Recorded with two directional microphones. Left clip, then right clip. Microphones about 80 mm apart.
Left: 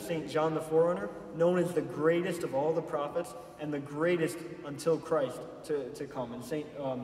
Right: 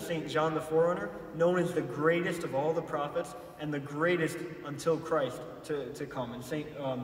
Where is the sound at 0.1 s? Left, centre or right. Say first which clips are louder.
Even; left.